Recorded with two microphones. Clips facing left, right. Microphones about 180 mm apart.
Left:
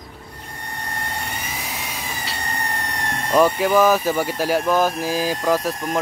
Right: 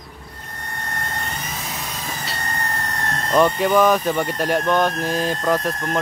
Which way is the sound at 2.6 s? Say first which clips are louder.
Even; 15° left (ahead or behind).